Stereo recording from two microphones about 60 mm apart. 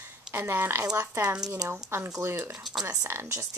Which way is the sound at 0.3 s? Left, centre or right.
Right.